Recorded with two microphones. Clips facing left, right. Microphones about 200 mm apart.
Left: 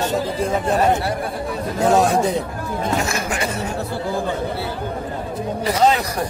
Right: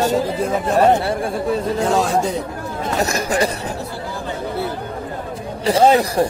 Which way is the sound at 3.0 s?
40° right (ahead or behind).